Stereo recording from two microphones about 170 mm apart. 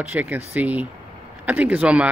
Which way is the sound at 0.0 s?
10° right (ahead or behind).